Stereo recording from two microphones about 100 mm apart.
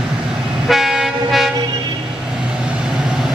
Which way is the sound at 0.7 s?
5° right (ahead or behind).